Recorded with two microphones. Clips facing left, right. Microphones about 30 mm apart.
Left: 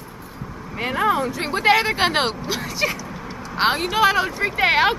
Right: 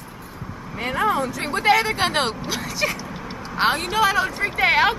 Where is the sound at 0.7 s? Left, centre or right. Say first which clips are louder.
Left 1 dB; centre.